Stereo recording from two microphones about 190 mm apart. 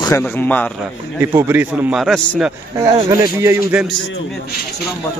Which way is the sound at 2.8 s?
15° right (ahead or behind).